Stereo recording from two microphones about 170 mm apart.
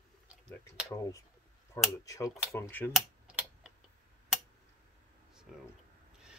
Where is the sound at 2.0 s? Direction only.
20° left (ahead or behind).